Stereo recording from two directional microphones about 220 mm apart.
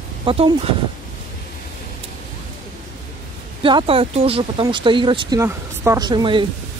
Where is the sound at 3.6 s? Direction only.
20° right (ahead or behind).